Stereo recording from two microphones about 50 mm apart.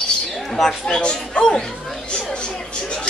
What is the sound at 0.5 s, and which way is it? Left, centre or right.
Speech, centre.